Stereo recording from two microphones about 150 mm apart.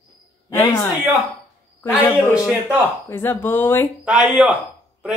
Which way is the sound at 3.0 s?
15° left (ahead or behind).